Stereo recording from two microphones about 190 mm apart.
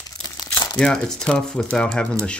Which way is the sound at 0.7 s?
5° left (ahead or behind).